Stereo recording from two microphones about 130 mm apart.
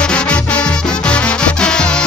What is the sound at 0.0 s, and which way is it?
Music, 10° left (ahead or behind).